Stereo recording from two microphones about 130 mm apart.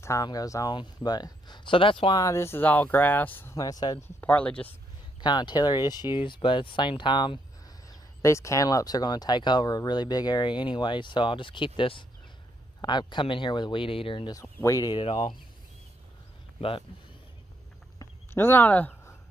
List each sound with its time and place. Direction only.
0.0 s speech: 25° left (ahead or behind)
2.1 s speech: 25° left (ahead or behind)
3.5 s speech: 30° left (ahead or behind)
4.2 s speech: 10° left (ahead or behind)
5.2 s speech: 35° left (ahead or behind)
8.2 s speech: 25° left (ahead or behind); by 14.3 s 40° left (ahead or behind)
14.4 s speech: 25° left (ahead or behind)
15.0 s speech: 40° left (ahead or behind)
17.9 s a sound: 15° left (ahead or behind)